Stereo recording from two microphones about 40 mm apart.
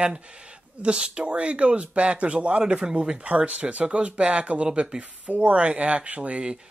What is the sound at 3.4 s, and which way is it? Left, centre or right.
Speech, right.